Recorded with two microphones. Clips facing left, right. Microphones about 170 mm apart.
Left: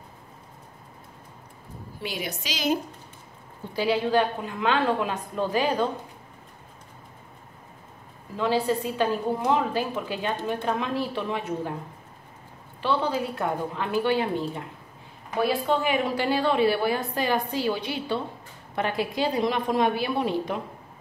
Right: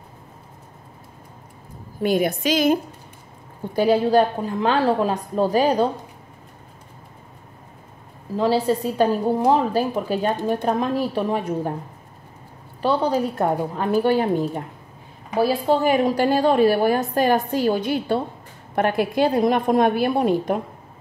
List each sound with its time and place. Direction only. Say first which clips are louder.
2.0 s a woman's voice: right 13 dB; 50° right (ahead or behind)
8.4 s a woman's voice: right 5 dB; 35° right (ahead or behind)
12.8 s a woman's voice: right 5 dB; 40° right (ahead or behind)